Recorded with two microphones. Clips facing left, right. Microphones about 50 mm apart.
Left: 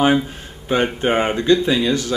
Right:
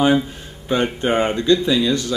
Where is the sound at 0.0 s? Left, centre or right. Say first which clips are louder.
Even; left.